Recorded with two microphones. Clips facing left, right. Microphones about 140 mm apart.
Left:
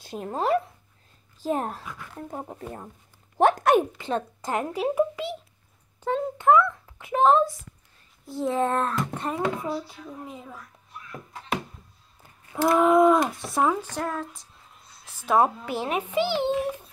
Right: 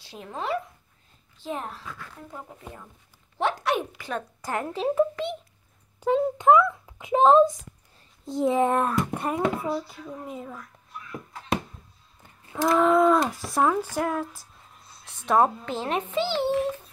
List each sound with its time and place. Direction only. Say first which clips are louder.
0.0 s speech: left 6 dB; 45° left (ahead or behind)
3.3 s a sound: left 7 dB; 50° left (ahead or behind)
4.0 s a child's voice: left 4 dB; 25° left (ahead or behind); by 5.4 s 5° left (ahead or behind)
5.9 s a sound: right 4 dB; 10° right (ahead or behind)
8.3 s speech: right 3 dB; 15° right (ahead or behind); by 10.6 s centre (ahead or behind)
12.6 s a child's voice: left 1 dB; 15° left (ahead or behind)
13.3 s speech: even; centre (ahead or behind)
13.9 s speech: right 3 dB; 10° right (ahead or behind)
15.0 s a child's voice: even; 5° left (ahead or behind)